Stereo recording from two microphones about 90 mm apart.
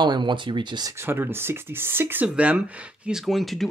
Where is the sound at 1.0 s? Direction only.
25° right (ahead or behind).